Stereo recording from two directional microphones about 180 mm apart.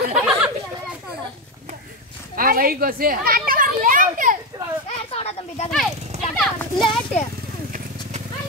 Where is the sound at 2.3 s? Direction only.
50° right (ahead or behind).